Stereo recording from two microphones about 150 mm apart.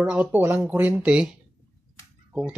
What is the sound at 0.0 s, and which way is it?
Speech, 10° right (ahead or behind).